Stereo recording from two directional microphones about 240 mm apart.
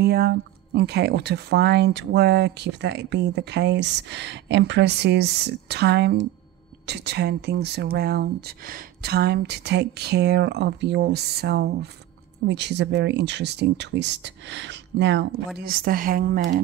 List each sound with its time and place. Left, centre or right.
0.0 s speech: right